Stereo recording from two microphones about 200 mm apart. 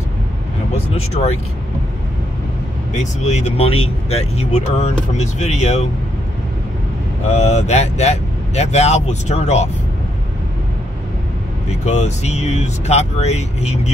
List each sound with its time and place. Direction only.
0.9 s speech: 30° left (ahead or behind)
2.9 s speech: 35° left (ahead or behind)
7.2 s speech: 35° left (ahead or behind)
11.7 s speech: 35° left (ahead or behind)